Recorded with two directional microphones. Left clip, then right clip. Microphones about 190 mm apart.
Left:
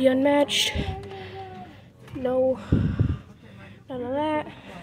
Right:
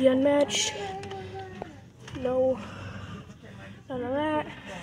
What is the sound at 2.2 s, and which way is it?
Speech, 35° left (ahead or behind).